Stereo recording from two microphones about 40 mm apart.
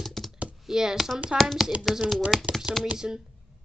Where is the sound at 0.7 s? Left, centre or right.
Centre.